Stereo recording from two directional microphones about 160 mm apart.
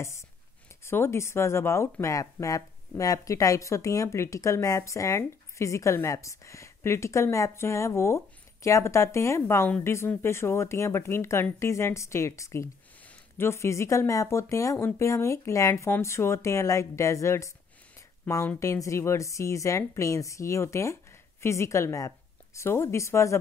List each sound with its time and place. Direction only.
0.8 s speech: 15° left (ahead or behind)